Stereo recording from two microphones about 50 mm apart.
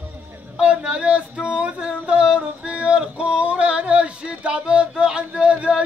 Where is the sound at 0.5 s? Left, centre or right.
Centre.